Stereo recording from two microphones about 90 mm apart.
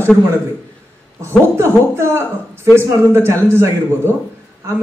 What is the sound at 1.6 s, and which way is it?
Speech, 30° right (ahead or behind).